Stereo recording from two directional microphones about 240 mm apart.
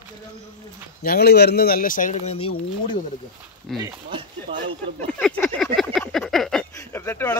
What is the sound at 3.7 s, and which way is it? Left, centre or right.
Speech, centre.